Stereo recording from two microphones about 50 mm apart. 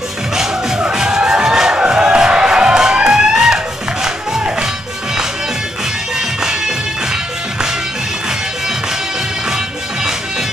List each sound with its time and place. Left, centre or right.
0.9 s music: centre
6.1 s bagpipes: centre